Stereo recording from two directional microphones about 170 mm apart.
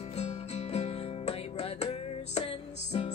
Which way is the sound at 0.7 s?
35° left (ahead or behind).